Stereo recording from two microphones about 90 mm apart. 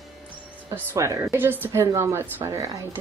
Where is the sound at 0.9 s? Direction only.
35° right (ahead or behind).